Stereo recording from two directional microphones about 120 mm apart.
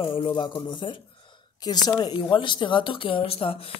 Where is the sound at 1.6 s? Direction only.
35° left (ahead or behind).